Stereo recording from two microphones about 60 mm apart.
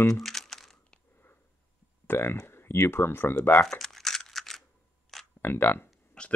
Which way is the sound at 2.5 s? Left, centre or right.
Left.